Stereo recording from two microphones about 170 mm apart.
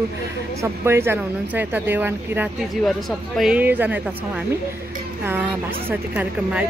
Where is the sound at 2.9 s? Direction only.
Centre (ahead or behind).